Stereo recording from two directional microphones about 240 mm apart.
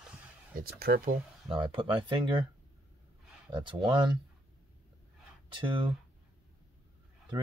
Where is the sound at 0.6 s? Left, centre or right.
Right.